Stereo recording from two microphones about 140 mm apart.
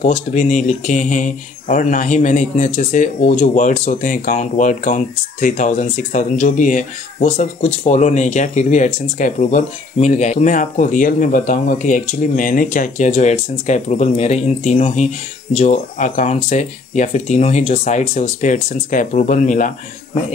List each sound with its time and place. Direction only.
0.0 s speech: 55° left (ahead or behind)